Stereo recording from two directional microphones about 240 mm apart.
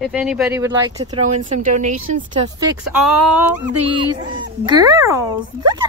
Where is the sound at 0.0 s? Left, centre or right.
Centre; by 2.2 s right.